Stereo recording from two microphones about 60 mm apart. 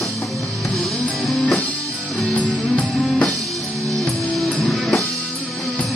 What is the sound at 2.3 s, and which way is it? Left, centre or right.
Music, centre.